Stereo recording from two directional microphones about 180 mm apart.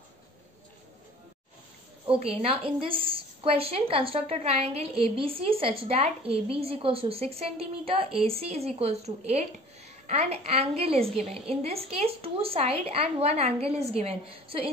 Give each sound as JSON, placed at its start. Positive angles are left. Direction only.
{"t": 2.0, "sound": "a woman's voice", "side_deg": -30}